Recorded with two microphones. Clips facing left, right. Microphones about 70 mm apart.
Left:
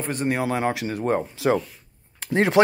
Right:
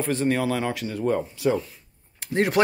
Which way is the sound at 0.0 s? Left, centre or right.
Centre.